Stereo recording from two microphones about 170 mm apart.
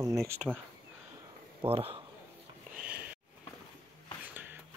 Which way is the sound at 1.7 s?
35° right (ahead or behind).